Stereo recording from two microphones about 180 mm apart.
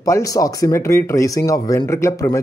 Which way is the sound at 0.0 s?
20° left (ahead or behind).